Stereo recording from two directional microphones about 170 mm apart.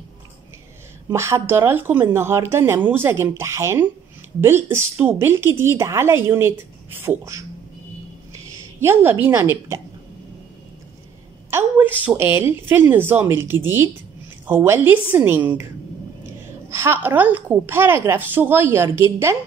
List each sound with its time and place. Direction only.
1.1 s a woman's voice: 15° right (ahead or behind)
8.5 s a woman's voice: 15° right (ahead or behind)
11.5 s a woman's voice: 10° right (ahead or behind)
16.6 s a woman's voice: 15° right (ahead or behind)